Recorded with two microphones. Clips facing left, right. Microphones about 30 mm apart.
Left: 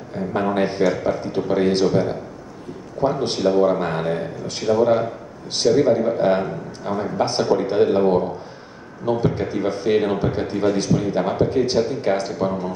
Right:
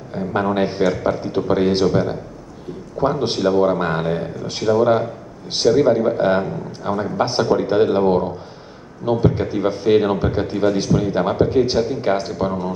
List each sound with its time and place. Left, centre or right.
0.1 s speech: centre
3.0 s speech: centre
5.7 s speech: centre